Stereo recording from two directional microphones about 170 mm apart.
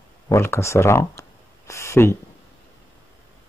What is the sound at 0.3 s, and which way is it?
Speech, 15° left (ahead or behind).